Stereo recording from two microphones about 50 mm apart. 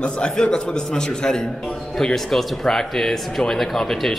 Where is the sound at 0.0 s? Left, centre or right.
Centre.